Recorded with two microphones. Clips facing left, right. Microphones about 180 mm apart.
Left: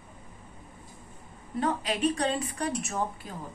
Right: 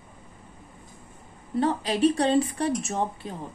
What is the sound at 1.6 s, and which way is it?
Speech, 30° right (ahead or behind).